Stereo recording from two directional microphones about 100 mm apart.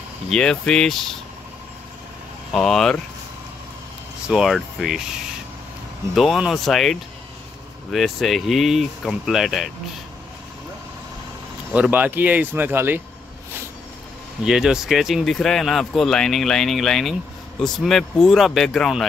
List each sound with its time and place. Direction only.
0.3 s speech: 5° left (ahead or behind)
2.5 s speech: 5° left (ahead or behind)
4.3 s speech: centre (ahead or behind)
6.1 s speech: 5° right (ahead or behind)
11.7 s speech: 15° right (ahead or behind)
14.4 s speech: 5° right (ahead or behind)